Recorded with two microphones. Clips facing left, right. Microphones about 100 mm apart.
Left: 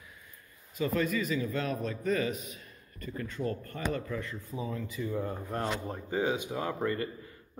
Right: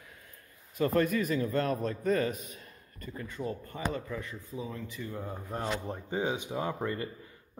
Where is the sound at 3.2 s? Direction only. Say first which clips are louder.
Left 2 dB; 15° right (ahead or behind).